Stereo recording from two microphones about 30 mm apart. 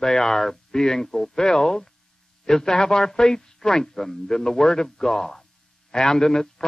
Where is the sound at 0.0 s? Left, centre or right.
Centre.